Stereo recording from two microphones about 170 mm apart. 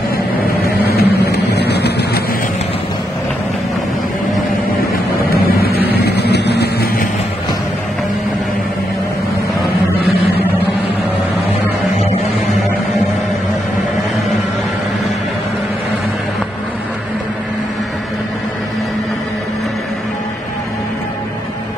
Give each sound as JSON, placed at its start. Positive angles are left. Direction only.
{"t": 0.8, "sound": "vehicle", "side_deg": 70}
{"t": 5.9, "sound": "vehicle", "side_deg": 75}